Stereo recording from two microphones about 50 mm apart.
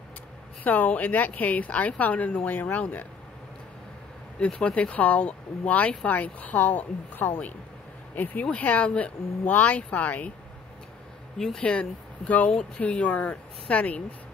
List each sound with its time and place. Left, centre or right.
0.7 s speech: left
4.4 s speech: left
11.3 s speech: centre
11.6 s speech: left